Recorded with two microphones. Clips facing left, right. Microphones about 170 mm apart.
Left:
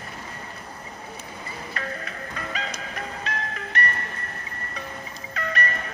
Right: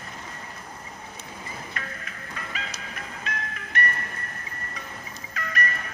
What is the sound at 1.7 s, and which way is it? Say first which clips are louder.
Music: left 5 dB; 35° left (ahead or behind).